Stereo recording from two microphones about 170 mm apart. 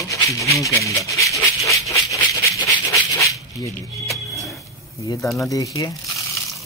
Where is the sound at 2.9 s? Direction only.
20° left (ahead or behind).